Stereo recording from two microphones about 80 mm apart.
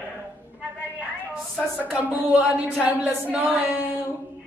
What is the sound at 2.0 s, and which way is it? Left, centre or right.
Speech, centre.